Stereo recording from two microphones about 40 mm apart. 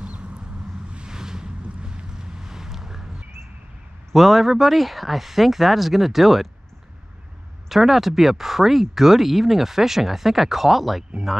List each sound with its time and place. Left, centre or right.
0.0 s a sound: right
0.9 s vehicle: centre
4.1 s speech: centre
7.7 s speech: centre